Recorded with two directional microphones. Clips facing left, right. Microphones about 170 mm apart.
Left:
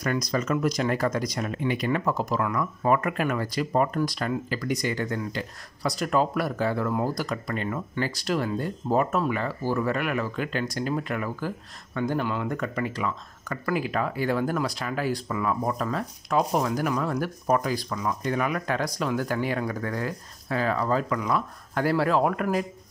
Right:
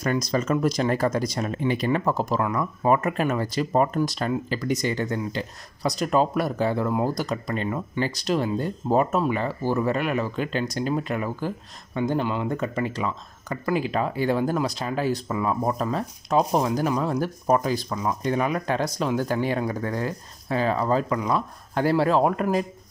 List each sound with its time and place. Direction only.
0.0 s speech: 30° right (ahead or behind)